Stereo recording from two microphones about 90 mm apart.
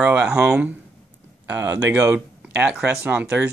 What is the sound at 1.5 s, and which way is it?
Speech, 25° right (ahead or behind).